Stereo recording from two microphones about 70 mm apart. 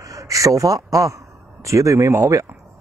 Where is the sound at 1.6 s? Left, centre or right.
Right.